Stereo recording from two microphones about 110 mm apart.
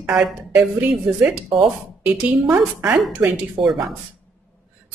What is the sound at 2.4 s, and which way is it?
Speech, 15° right (ahead or behind).